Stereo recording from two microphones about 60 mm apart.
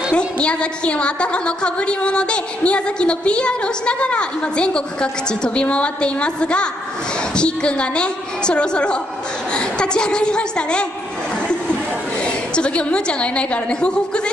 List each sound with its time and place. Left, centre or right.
0.1 s a woman's voice: centre
12.5 s a woman's voice: centre